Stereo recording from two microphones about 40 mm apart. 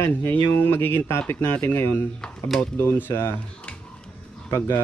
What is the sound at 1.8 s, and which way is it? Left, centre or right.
Speech, left.